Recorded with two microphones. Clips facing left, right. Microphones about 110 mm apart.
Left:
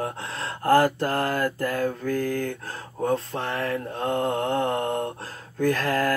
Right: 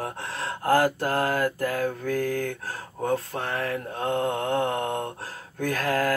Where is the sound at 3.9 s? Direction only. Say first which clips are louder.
Even; 20° right (ahead or behind).